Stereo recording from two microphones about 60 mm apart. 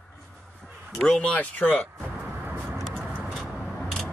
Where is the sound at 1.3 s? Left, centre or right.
Left.